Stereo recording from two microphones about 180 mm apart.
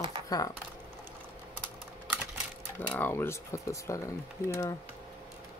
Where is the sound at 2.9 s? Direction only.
10° left (ahead or behind).